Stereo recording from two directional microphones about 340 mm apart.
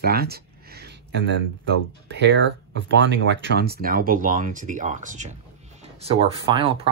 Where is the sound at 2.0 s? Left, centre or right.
Right.